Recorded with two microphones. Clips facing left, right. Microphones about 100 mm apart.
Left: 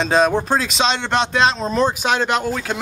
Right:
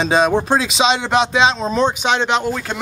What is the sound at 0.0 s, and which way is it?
Speech, centre (ahead or behind).